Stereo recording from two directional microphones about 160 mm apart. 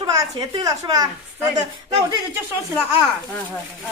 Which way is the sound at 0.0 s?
20° right (ahead or behind).